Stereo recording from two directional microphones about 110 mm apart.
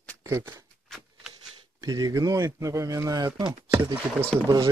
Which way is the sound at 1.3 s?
35° right (ahead or behind).